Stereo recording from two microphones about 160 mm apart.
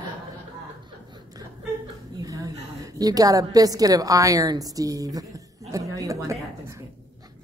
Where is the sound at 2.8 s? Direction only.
25° right (ahead or behind).